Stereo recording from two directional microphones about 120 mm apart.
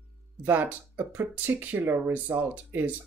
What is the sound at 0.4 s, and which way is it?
Speech, 15° right (ahead or behind).